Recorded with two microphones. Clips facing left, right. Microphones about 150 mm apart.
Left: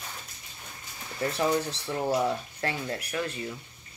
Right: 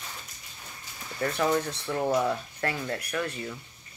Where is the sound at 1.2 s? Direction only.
25° left (ahead or behind).